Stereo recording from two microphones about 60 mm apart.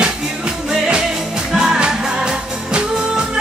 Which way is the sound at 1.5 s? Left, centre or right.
Centre.